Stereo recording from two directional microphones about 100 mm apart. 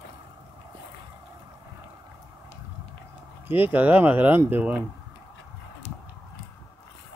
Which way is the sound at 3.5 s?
20° right (ahead or behind).